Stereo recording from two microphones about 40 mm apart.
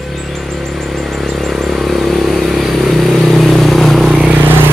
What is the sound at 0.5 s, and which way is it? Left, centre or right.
Vehicle, centre.